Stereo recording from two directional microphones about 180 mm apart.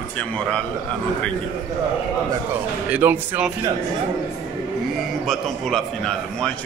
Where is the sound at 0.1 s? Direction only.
5° left (ahead or behind).